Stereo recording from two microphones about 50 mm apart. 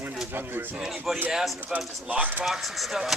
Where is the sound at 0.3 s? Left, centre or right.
Right.